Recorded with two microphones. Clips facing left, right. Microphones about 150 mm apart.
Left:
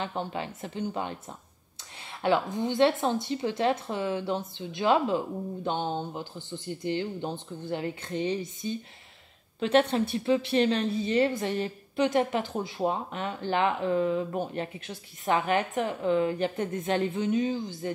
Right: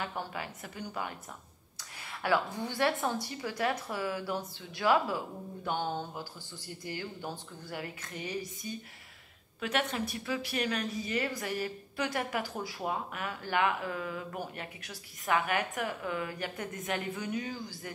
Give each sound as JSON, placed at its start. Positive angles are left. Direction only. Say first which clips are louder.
{"t": 0.0, "sound": "a woman's voice", "louder": "left 5 dB", "side_deg": 25}
{"t": 2.2, "sound": "a woman's voice", "louder": "left 5 dB", "side_deg": 20}